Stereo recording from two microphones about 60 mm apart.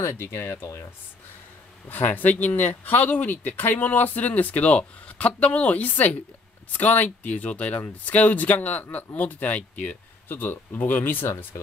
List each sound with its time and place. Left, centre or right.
0.0 s speech: left
1.9 s speech: left
10.2 s speech: left